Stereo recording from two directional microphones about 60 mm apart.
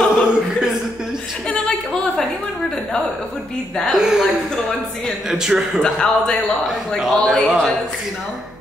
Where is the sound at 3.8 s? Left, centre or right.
Centre.